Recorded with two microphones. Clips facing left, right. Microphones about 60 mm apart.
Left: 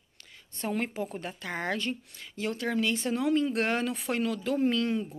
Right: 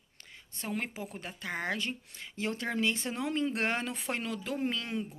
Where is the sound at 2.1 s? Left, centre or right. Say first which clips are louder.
Left 2 dB; right.